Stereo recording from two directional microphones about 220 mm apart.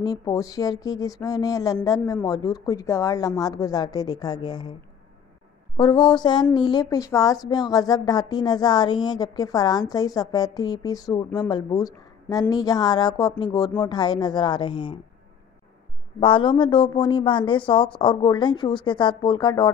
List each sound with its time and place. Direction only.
0.0 s speech: 15° left (ahead or behind)
5.8 s a woman's voice: 20° left (ahead or behind)
16.2 s a woman's voice: 25° left (ahead or behind)